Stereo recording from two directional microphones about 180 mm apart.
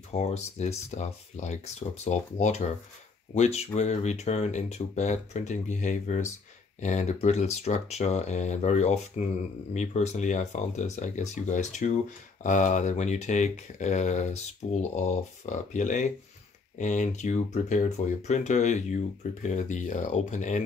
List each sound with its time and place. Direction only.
0.1 s speech: 40° left (ahead or behind)